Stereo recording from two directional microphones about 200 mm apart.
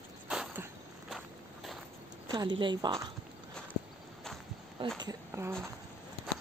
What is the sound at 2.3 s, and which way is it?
Speech, 20° right (ahead or behind).